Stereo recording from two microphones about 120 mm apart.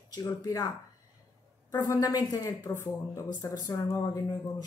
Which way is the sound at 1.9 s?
30° left (ahead or behind).